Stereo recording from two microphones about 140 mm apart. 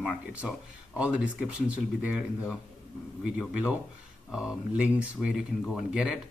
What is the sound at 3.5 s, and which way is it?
Speech, 10° right (ahead or behind).